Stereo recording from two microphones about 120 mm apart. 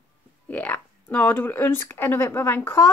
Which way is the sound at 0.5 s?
15° left (ahead or behind).